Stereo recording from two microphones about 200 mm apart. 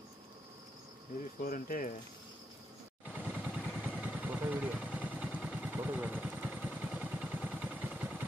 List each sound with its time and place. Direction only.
1.4 s speech: 45° left (ahead or behind)
3.1 s vehicle: 5° right (ahead or behind)